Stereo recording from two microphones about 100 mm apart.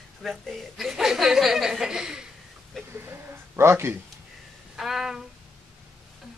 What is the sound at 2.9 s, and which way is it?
Speech, 20° right (ahead or behind).